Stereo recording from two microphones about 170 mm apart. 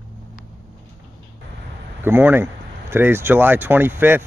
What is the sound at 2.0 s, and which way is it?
Speech, 10° right (ahead or behind).